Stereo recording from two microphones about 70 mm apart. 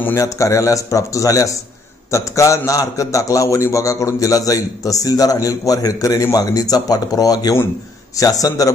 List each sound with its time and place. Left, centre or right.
0.1 s a man's voice: left